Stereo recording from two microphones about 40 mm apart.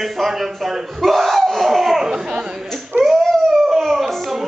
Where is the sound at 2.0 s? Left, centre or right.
Centre.